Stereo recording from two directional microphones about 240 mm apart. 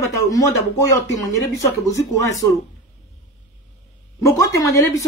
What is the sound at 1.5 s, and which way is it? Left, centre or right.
Speech, centre.